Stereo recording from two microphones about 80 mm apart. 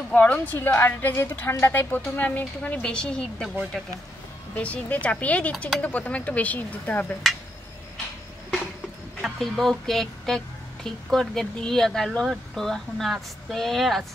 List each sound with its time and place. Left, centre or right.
0.1 s a woman's voice: left
3.8 s speech: centre
4.6 s a woman's voice: centre
9.2 s speech: centre